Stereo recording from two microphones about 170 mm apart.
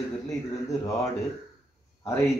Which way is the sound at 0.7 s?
20° left (ahead or behind).